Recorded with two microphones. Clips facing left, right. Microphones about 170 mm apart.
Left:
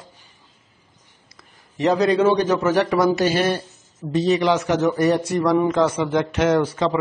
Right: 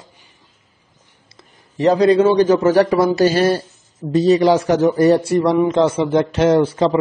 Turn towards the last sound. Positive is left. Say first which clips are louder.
# right 5 dB
turn(degrees=-30)  # may be behind; listen again after turning